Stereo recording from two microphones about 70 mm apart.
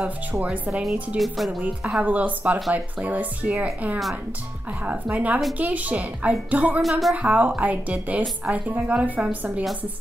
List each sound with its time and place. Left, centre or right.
0.0 s a woman's voice: right
1.1 s music: centre
2.0 s a woman's voice: right
6.8 s music: centre
7.2 s a woman's voice: right